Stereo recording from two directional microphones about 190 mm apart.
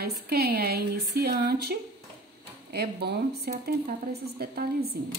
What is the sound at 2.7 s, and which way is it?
Speech, 60° right (ahead or behind).